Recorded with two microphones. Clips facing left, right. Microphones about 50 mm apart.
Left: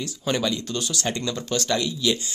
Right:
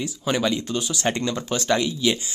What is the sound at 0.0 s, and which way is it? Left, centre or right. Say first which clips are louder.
Speech: right 2 dB; centre.